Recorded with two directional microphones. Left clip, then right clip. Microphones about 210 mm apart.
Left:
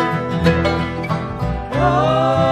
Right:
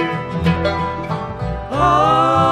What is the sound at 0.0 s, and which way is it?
Music, 45° left (ahead or behind).